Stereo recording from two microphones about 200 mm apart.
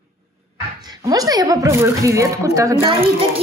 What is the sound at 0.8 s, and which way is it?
A woman's voice, 20° right (ahead or behind).